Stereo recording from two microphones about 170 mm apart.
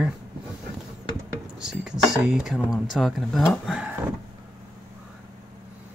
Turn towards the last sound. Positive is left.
turn(degrees=-5)  # may be behind; listen again after turning